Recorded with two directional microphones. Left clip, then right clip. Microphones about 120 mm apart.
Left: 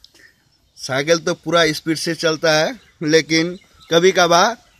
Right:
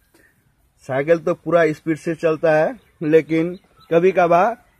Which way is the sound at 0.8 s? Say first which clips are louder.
Even; 10° left (ahead or behind).